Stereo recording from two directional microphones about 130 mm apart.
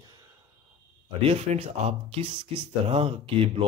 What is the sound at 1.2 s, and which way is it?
Speech, 50° right (ahead or behind).